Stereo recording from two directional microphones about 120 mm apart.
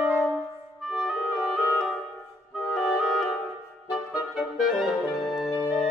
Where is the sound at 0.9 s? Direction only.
Centre (ahead or behind).